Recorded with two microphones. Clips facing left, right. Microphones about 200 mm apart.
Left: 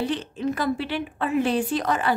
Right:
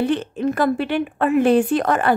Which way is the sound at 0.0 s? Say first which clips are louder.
Right 6 dB; 55° right (ahead or behind).